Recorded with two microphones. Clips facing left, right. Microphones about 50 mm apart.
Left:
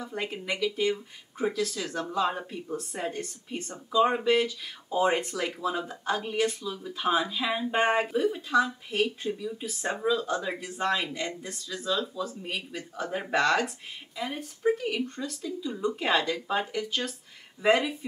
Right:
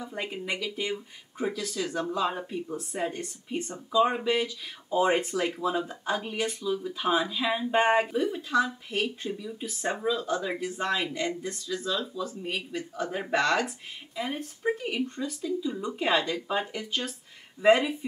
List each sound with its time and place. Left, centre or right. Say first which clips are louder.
0.0 s speech: even; centre
4.0 s speech: left 2 dB; centre
13.7 s speech: right 1 dB; centre